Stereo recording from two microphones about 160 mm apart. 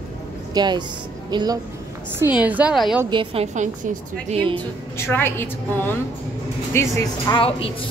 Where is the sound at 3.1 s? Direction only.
40° right (ahead or behind).